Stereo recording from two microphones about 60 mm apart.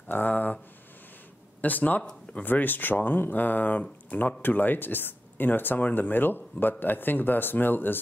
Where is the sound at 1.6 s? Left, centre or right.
Left.